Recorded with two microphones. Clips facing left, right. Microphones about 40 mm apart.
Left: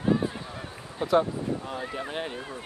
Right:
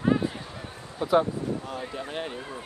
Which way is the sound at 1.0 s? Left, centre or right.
Left.